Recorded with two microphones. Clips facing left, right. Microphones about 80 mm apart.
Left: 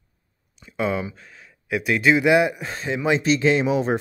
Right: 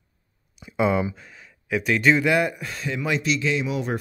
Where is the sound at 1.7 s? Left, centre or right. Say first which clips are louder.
Left 1 dB; centre.